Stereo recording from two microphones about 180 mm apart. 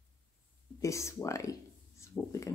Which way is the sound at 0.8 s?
15° left (ahead or behind).